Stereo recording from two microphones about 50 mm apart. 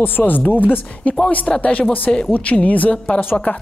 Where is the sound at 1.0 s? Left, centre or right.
Left.